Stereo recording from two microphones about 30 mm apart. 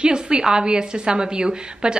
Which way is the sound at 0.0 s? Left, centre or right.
Right.